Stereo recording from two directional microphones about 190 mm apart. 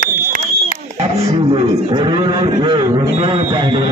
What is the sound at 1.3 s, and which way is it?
A man's voice, 25° right (ahead or behind).